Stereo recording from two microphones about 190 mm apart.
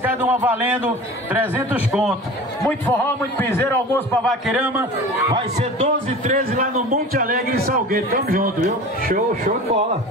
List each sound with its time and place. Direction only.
0.0 s a man's voice: 10° right (ahead or behind)
2.9 s a man's voice: 10° left (ahead or behind); by 4.8 s 5° right (ahead or behind)
5.3 s a man's voice: 35° right (ahead or behind)